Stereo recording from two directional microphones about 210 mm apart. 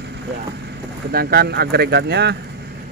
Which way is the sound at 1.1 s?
45° right (ahead or behind).